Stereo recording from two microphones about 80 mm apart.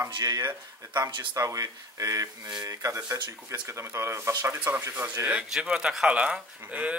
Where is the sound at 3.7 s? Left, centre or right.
Right.